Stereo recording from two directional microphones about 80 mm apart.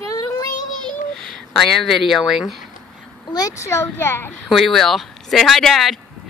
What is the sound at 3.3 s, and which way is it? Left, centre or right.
Speech, left.